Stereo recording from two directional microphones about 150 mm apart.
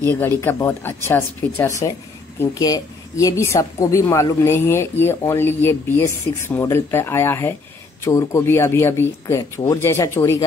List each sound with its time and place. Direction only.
0.0 s speech: 15° left (ahead or behind)